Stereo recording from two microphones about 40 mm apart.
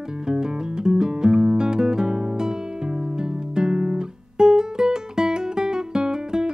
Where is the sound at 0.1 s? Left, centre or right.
Centre.